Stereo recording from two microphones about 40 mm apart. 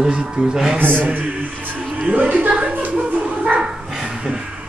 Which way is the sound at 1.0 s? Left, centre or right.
Right.